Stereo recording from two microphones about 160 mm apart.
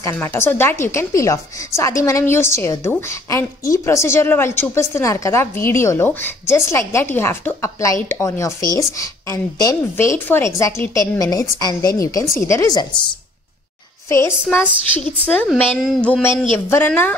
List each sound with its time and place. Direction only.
0.0 s a woman's voice: 15° left (ahead or behind)
14.0 s a woman's voice: 15° left (ahead or behind)